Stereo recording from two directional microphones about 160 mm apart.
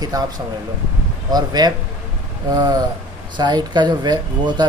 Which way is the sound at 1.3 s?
25° right (ahead or behind).